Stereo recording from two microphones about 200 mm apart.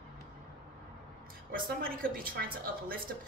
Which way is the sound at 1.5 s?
45° right (ahead or behind).